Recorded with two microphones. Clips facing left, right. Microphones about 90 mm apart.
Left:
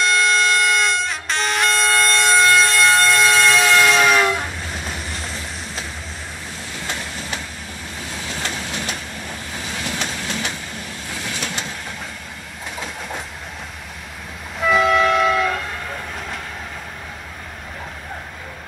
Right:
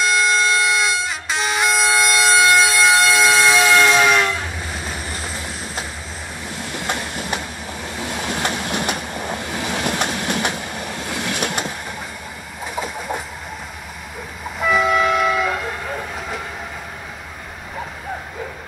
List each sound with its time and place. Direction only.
0.0 s vehicle: centre (ahead or behind)
6.7 s train: 60° right (ahead or behind)
8.0 s vehicle: 65° right (ahead or behind)
8.6 s train: 55° right (ahead or behind)
12.7 s train: 5° right (ahead or behind)
14.6 s train: centre (ahead or behind)